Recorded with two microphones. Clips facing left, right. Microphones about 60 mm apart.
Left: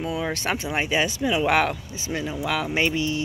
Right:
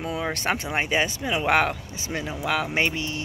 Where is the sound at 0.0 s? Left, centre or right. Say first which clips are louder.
Left 1 dB; right.